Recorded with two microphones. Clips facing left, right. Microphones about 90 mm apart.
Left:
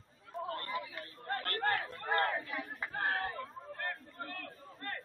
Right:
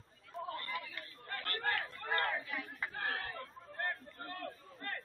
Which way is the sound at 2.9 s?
40° left (ahead or behind).